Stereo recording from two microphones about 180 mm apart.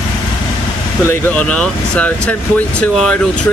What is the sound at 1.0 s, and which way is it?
Speech, 10° left (ahead or behind).